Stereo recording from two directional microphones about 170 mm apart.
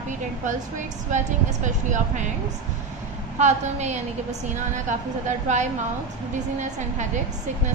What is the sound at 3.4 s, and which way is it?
A woman's voice, 40° right (ahead or behind).